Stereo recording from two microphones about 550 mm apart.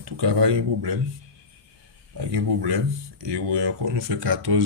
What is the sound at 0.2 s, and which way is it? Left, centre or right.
Speech, right.